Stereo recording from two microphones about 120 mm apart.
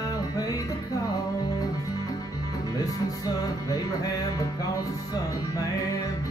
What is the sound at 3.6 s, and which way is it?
Speech, 30° left (ahead or behind).